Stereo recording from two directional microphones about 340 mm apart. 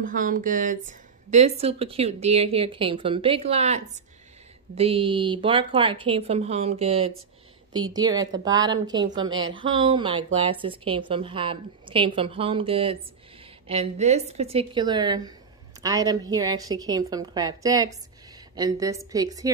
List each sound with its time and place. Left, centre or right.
0.0 s a woman's voice: right